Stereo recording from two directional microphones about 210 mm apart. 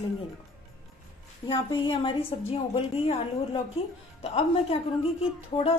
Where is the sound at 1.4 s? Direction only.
25° left (ahead or behind).